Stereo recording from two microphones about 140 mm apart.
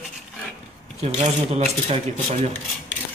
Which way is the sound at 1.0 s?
50° right (ahead or behind).